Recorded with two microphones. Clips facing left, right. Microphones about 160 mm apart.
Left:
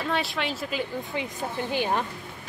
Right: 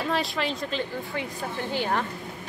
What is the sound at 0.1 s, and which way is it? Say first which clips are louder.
A woman's voice: even; centre (ahead or behind).